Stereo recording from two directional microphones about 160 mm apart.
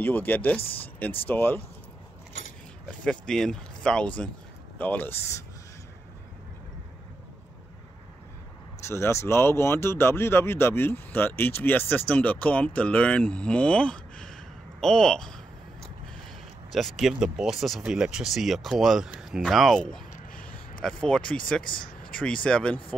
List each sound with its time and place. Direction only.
0.0 s speech: 10° left (ahead or behind)
0.6 s speech: 35° left (ahead or behind)
1.2 s speech: 10° left (ahead or behind)
3.0 s speech: 5° left (ahead or behind)
8.8 s speech: 15° left (ahead or behind)
16.7 s speech: centre (ahead or behind)
21.7 s a sound: 60° left (ahead or behind)
22.1 s speech: 5° left (ahead or behind)